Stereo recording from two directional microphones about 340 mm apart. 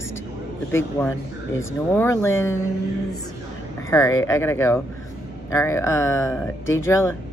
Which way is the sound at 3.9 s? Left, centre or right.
Centre.